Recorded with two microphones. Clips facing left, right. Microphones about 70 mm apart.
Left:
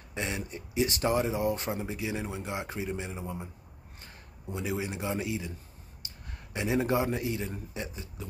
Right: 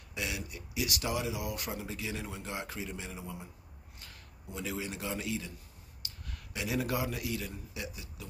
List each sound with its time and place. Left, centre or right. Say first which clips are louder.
0.1 s a man's voice: left 4 dB; left